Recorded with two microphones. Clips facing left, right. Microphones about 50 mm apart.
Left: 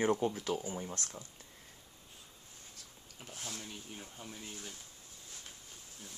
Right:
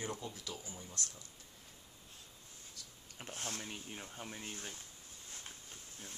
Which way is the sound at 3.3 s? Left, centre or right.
Right.